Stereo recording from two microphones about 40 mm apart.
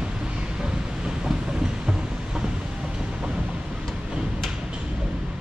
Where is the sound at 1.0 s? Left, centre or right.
Centre.